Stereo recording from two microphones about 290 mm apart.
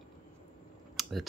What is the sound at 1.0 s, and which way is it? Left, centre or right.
Typing, centre.